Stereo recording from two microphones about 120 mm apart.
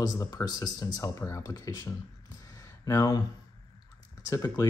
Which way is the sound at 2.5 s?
30° left (ahead or behind).